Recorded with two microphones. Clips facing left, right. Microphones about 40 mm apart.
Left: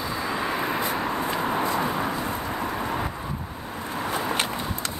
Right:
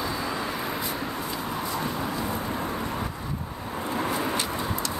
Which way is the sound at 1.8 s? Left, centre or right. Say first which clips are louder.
Left 3 dB; left.